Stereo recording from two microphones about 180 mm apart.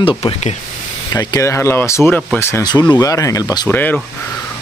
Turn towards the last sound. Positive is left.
turn(degrees=10)  # may be behind; listen again after turning